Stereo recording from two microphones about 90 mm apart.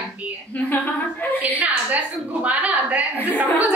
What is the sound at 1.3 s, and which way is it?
A woman's voice, 20° right (ahead or behind).